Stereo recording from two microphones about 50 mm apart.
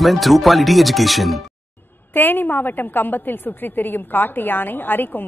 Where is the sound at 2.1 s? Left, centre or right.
Left.